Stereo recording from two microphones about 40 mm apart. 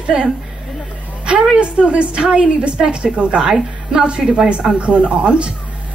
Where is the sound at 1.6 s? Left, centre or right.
Right.